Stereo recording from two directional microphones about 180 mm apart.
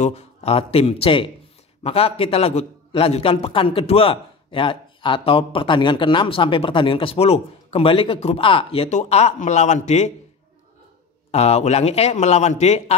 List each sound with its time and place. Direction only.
0.0 s a man's voice: 35° left (ahead or behind)
11.3 s a man's voice: 35° left (ahead or behind)